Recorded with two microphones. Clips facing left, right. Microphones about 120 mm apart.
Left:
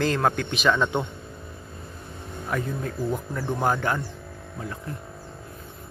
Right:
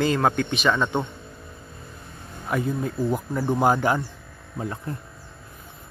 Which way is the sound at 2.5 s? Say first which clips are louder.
Right 4 dB; 10° right (ahead or behind).